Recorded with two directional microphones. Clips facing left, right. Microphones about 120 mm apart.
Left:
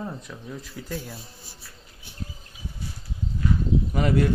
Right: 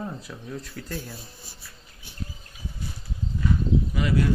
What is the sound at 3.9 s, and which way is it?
Speech, 45° left (ahead or behind).